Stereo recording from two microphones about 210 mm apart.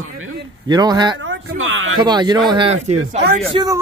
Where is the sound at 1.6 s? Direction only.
70° right (ahead or behind).